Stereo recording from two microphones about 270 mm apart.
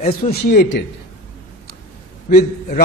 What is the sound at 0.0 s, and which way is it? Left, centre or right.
Speech, left.